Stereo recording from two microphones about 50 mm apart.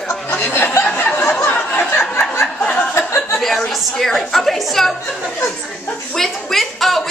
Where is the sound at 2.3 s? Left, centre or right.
Left.